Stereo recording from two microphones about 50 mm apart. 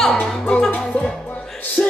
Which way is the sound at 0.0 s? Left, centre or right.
Centre.